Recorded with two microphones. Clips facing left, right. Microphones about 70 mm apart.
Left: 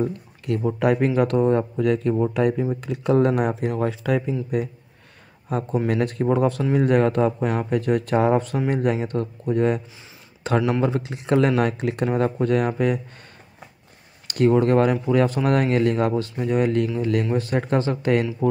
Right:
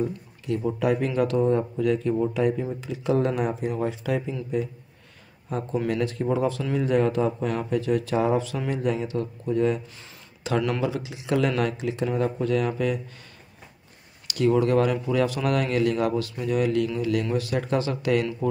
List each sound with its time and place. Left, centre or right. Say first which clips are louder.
0.7 s speech: left 5 dB; left
2.3 s speech: left 3 dB; left
5.9 s speech: left 4 dB; left
14.2 s speech: left 3 dB; left